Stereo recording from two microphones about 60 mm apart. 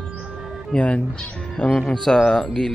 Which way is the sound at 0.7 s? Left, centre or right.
Centre.